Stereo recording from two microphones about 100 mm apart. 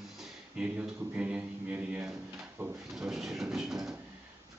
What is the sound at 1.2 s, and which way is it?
Speech, 15° right (ahead or behind).